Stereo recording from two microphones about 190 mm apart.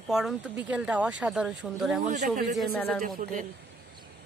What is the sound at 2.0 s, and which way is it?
Speech, 40° right (ahead or behind).